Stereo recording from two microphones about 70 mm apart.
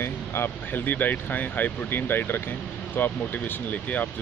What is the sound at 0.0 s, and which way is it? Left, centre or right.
Speech, left.